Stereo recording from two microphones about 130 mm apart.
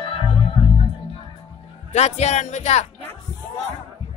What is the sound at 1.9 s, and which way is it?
Speech, 60° left (ahead or behind).